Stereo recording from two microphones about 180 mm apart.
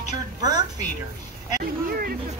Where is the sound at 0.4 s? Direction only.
20° right (ahead or behind).